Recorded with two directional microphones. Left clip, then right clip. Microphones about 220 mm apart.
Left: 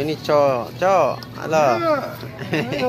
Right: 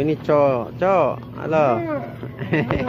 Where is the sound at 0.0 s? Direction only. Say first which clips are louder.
Even; 15° right (ahead or behind).